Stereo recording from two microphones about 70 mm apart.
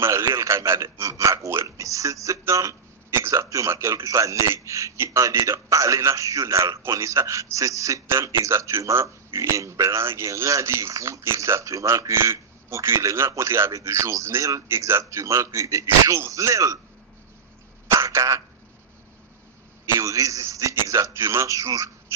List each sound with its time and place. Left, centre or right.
0.0 s a man's voice: right
17.8 s speech: right
20.0 s a man's voice: right